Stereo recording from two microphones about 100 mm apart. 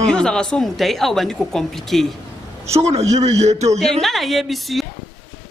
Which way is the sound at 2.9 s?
90° right.